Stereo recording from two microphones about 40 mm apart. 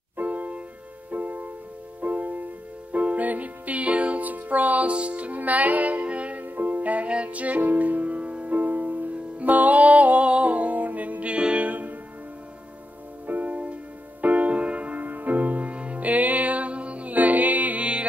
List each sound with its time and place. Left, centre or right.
0.2 s music: right
6.4 s music: right
13.3 s music: right